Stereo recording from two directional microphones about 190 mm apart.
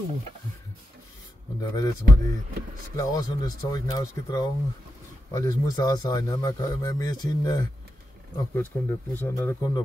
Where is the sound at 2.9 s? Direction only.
20° left (ahead or behind).